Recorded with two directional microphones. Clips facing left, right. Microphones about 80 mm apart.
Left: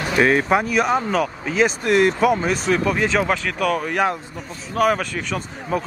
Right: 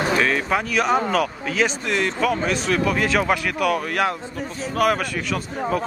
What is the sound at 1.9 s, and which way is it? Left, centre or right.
Speech, centre.